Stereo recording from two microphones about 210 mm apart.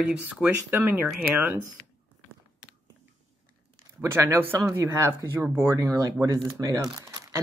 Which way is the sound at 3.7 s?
10° right (ahead or behind).